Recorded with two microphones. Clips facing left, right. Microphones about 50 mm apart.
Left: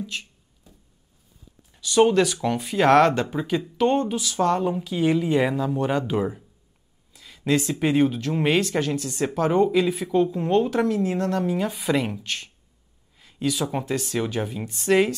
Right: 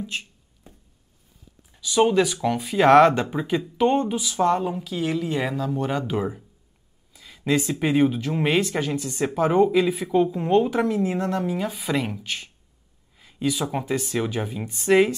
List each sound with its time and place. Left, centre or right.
0.0 s speech: right
0.7 s a sound: right
1.7 s speech: centre
4.7 s speech: centre
7.1 s a sound: centre
7.8 s speech: centre